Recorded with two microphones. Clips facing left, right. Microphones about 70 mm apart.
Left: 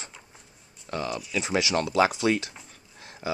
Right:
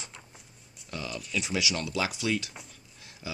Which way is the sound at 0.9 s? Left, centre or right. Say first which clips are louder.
Left 5 dB; left.